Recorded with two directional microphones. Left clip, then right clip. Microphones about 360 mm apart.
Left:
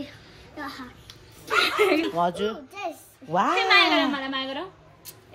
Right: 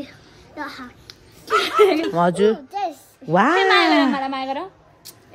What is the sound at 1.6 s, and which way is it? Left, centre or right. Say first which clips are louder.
A child's voice: right 5 dB; centre.